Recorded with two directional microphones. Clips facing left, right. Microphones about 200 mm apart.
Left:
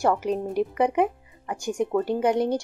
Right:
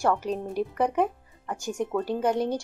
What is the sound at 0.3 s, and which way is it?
Speech, 10° left (ahead or behind).